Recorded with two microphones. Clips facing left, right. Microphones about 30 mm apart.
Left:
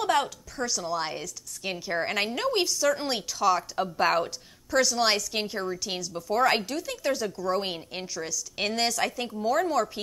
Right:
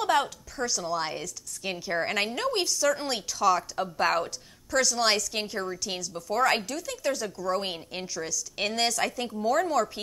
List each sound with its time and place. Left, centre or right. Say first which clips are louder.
0.0 s a woman's voice: even; centre